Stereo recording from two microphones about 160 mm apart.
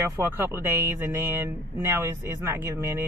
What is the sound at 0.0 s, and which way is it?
Speech, 15° right (ahead or behind).